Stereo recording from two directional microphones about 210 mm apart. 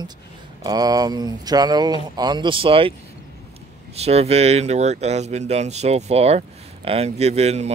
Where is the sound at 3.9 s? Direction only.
30° right (ahead or behind).